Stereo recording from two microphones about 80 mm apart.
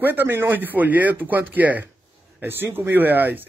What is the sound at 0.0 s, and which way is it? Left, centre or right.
Speech, right.